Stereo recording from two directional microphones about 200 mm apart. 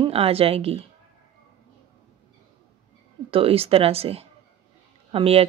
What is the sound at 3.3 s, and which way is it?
Speech, 30° right (ahead or behind).